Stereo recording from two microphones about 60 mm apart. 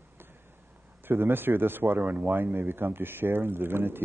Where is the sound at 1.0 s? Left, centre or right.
Right.